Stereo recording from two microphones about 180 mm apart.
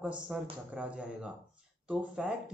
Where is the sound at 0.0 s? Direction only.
5° right (ahead or behind).